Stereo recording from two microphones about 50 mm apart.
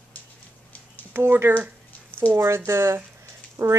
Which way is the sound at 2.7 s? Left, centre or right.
Right.